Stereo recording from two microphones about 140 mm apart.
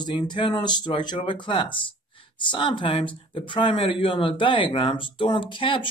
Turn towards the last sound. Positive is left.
turn(degrees=35)  # may be behind; listen again after turning